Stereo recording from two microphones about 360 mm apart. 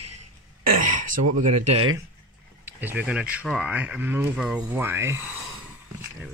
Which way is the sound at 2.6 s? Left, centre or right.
Centre.